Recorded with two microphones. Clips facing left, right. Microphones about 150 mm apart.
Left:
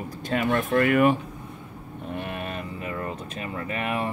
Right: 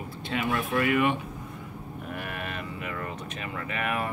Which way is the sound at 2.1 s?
25° left (ahead or behind).